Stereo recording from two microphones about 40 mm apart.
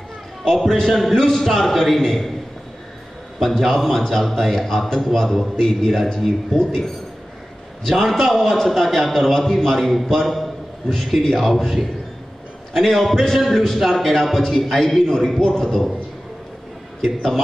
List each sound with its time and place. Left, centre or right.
0.8 s a man's voice: centre
3.3 s a man's voice: centre
7.9 s a man's voice: centre
17.0 s a man's voice: centre